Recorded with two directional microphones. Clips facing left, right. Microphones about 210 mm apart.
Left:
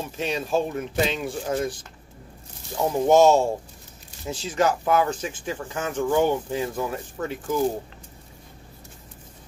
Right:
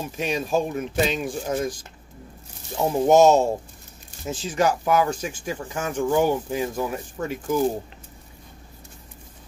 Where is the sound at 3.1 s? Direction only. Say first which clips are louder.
Right 1 dB; 20° right (ahead or behind).